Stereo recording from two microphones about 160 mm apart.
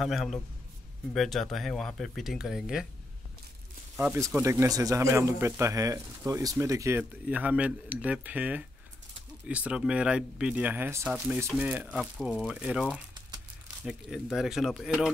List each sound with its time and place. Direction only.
0.0 s speech: centre (ahead or behind)
3.9 s a man's voice: 15° right (ahead or behind)